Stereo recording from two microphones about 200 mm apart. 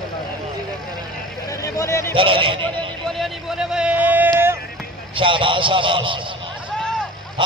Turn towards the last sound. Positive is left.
turn(degrees=-25)  # may be behind; listen again after turning